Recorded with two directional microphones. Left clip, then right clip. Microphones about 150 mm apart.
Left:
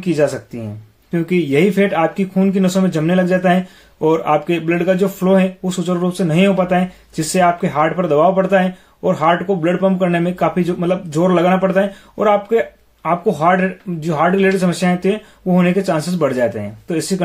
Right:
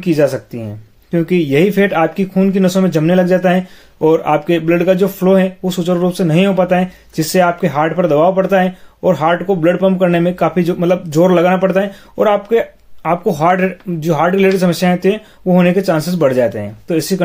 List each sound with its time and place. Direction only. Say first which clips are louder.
0.0 s speech: right 3 dB; 35° right (ahead or behind)